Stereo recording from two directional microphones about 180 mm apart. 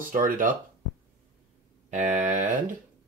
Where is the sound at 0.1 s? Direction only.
50° right (ahead or behind).